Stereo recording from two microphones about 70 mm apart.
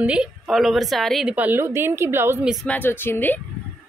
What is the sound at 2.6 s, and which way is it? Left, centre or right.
Speech, left.